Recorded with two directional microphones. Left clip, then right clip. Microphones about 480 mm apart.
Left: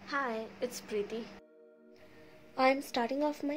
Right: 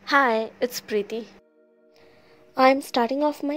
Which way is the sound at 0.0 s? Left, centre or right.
Centre.